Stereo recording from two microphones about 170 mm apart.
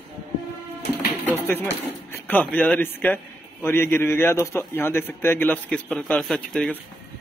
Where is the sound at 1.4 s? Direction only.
15° left (ahead or behind).